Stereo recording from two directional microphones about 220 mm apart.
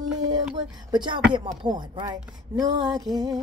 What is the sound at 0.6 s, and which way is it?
A woman's voice, 20° right (ahead or behind).